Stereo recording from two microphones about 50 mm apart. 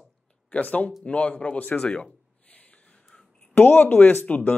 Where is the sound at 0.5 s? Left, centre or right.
Left.